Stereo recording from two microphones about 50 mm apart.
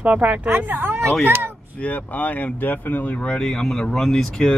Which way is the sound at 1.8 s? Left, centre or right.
Left.